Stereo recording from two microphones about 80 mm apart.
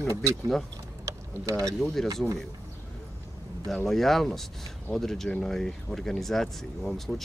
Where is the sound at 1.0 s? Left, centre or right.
Right.